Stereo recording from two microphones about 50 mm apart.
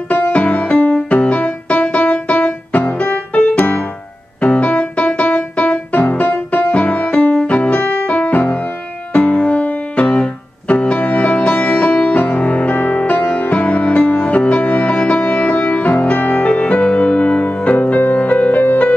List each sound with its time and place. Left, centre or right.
0.3 s music: left